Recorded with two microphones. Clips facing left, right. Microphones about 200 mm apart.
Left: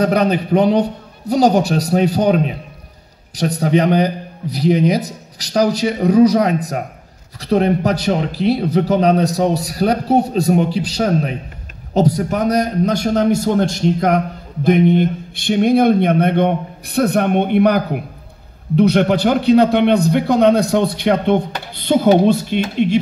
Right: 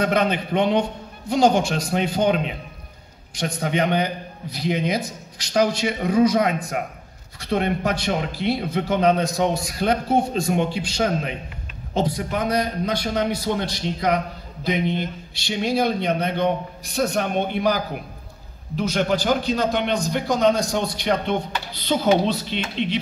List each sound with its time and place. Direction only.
0.0 s a man's voice: 35° left (ahead or behind)